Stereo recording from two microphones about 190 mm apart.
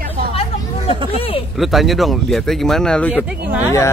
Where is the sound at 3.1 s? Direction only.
5° right (ahead or behind).